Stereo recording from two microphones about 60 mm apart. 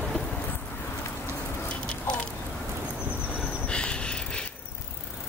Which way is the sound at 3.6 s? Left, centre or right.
Centre.